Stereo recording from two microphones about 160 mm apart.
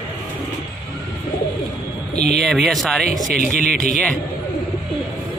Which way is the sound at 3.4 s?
50° left (ahead or behind).